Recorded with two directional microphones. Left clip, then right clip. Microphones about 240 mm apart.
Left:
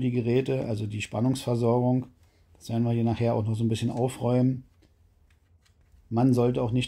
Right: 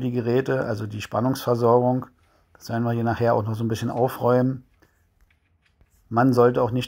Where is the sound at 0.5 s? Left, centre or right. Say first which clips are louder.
Right 5 dB; centre.